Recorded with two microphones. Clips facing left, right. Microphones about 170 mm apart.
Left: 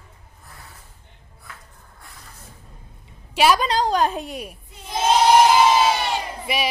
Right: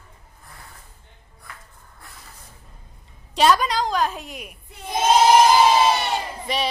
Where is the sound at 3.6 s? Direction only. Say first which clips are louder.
Left 3 dB; 30° left (ahead or behind).